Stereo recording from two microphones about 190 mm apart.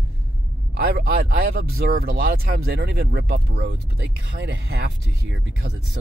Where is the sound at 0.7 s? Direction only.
50° right (ahead or behind).